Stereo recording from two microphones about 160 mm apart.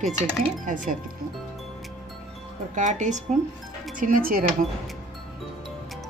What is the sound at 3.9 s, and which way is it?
Speech, 60° right (ahead or behind).